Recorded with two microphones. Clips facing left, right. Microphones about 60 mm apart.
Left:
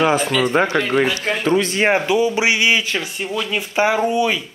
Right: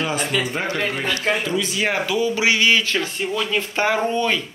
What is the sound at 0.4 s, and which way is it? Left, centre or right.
Speech, left.